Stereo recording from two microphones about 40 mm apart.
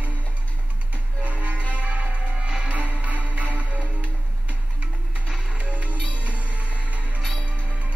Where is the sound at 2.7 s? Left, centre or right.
Right.